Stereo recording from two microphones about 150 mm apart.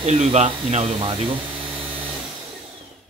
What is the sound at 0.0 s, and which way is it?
Speech, 40° right (ahead or behind).